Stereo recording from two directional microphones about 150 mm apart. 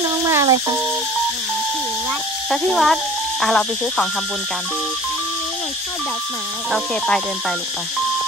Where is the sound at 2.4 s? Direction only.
Centre (ahead or behind).